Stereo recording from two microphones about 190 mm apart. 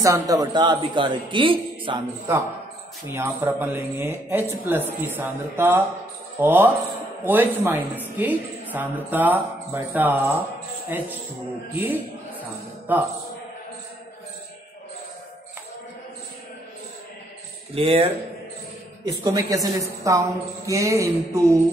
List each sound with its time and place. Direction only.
0.0 s a man's voice: 15° right (ahead or behind)
3.1 s speech: 15° right (ahead or behind)
17.7 s a man's voice: 30° right (ahead or behind)
19.2 s speech: 20° right (ahead or behind)